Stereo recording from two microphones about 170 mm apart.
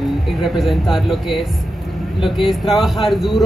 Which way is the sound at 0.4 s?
Centre (ahead or behind).